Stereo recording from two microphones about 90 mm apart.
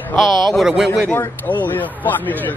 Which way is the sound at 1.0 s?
20° left (ahead or behind).